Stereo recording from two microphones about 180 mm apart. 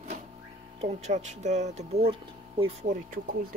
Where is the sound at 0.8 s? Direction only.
40° right (ahead or behind).